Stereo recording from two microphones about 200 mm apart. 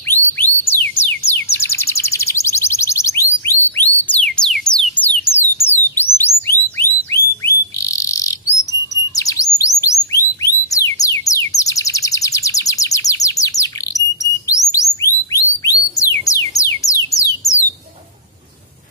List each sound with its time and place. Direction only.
0.1 s bird: 10° left (ahead or behind)
3.4 s music: 10° left (ahead or behind)
6.8 s whistle: 10° left (ahead or behind)
8.9 s bird: 15° left (ahead or behind)
14.5 s music: 15° left (ahead or behind)